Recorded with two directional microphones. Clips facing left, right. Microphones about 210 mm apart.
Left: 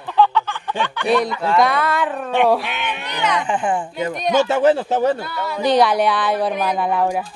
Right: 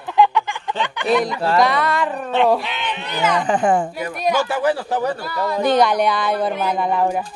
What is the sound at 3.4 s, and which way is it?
Speech, 40° right (ahead or behind).